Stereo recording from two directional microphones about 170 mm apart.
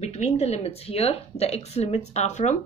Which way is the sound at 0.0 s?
40° left (ahead or behind).